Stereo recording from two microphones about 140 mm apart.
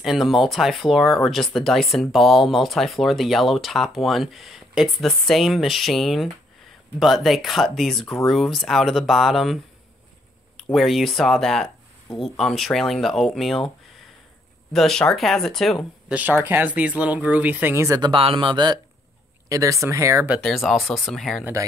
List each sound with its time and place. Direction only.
0.0 s speech: centre (ahead or behind)
10.7 s speech: centre (ahead or behind)
14.7 s speech: 5° left (ahead or behind)
16.2 s speech: 15° right (ahead or behind)
18.1 s speech: 40° right (ahead or behind)
19.5 s speech: 20° right (ahead or behind)
20.3 s speech: centre (ahead or behind)